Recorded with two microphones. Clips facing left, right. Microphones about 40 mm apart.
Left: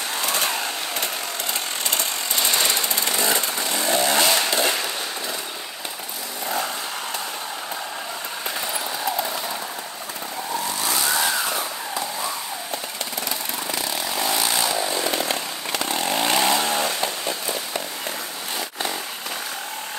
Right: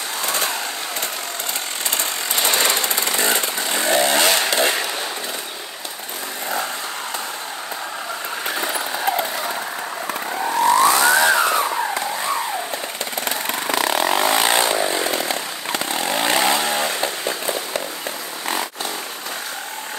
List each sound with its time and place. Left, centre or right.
2.0 s chainsaw: right
8.5 s vehicle: right
10.4 s vehicle: right
13.7 s vehicle: right
15.0 s chainsaw: centre
15.9 s chainsaw: right
16.7 s chainsaw: right